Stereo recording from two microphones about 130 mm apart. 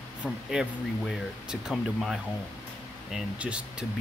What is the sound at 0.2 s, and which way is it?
Speech, 5° right (ahead or behind).